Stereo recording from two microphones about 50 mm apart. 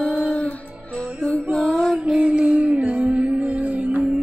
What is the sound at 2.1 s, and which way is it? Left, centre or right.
Music, centre.